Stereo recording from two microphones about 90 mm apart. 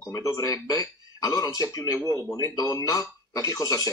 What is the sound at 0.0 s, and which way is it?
A man's voice, 40° left (ahead or behind).